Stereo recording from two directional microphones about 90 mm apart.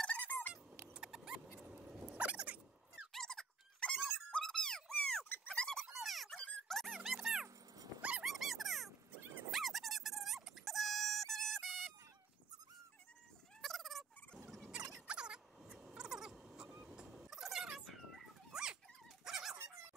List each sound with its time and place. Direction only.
0.0 s squeak: 15° left (ahead or behind)
0.9 s rodents: 10° right (ahead or behind)
1.6 s a sound: 10° right (ahead or behind)
3.1 s squeak: 5° left (ahead or behind)
4.3 s a sound: 5° left (ahead or behind)
6.7 s squeak: centre (ahead or behind)
7.4 s dog: 45° right (ahead or behind)
8.2 s dog: centre (ahead or behind)
9.5 s music: centre (ahead or behind)
13.6 s turkey: centre (ahead or behind)
15.0 s rodents: 10° right (ahead or behind)
15.9 s a sound: 5° right (ahead or behind)
19.2 s dog: 5° right (ahead or behind)